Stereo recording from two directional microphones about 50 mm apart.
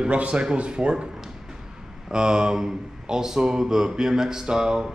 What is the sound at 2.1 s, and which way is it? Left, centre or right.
A man's voice, centre.